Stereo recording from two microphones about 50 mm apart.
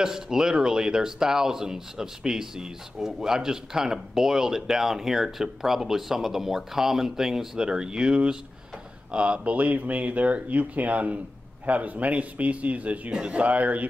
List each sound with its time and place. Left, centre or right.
0.0 s speech: centre; by 13.8 s right